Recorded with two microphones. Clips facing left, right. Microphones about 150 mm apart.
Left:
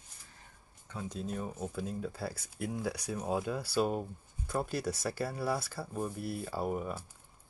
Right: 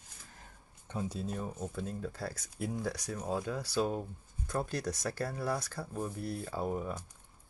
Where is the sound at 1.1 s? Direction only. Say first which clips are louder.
Even; centre (ahead or behind).